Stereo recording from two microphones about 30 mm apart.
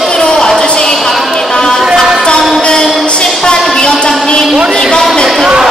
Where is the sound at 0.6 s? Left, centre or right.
Left.